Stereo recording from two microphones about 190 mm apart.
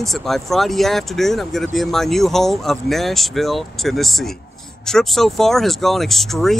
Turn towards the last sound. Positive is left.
turn(degrees=0)  # may be behind; listen again after turning